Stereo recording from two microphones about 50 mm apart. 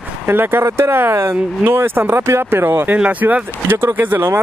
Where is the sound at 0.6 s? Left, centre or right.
Right.